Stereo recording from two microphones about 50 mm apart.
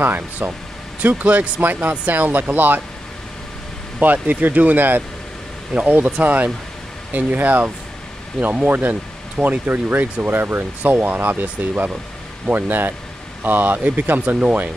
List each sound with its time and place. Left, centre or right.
0.0 s speech: right
1.0 s speech: right
4.0 s speech: right